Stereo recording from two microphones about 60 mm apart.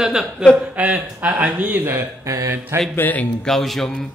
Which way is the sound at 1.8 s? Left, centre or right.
Right.